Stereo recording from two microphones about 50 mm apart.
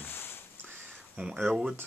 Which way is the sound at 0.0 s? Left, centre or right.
Left.